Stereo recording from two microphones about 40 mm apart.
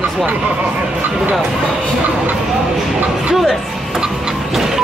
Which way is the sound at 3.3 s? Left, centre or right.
Centre.